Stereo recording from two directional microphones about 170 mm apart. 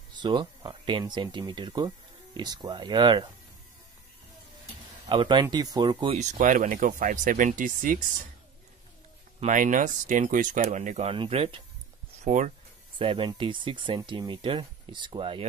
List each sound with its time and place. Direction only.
0.1 s speech: 25° right (ahead or behind)
5.1 s speech: 30° right (ahead or behind)
6.1 s speech: 45° right (ahead or behind)
9.4 s speech: 50° right (ahead or behind); by 11.6 s 35° right (ahead or behind)
12.3 s speech: 45° right (ahead or behind)
13.0 s speech: 30° right (ahead or behind)